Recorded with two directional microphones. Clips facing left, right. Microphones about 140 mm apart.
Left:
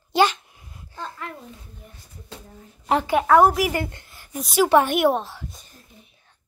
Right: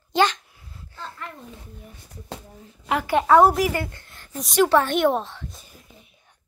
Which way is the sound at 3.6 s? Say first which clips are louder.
Even; 20° left (ahead or behind).